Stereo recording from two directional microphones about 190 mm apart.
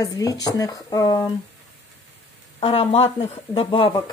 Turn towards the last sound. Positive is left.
turn(degrees=25)  # may be behind; listen again after turning